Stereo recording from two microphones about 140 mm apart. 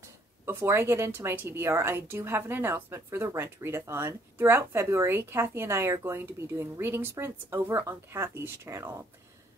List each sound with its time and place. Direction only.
0.5 s a woman's voice: 15° right (ahead or behind)